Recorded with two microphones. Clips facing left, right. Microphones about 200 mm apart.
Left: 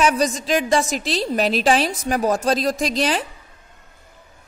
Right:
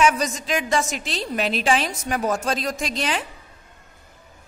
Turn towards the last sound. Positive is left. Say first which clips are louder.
# left 5 dB
turn(degrees=35)  # may be behind; listen again after turning